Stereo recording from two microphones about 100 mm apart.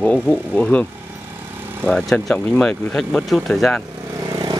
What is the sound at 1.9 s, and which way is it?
Speech, 5° left (ahead or behind).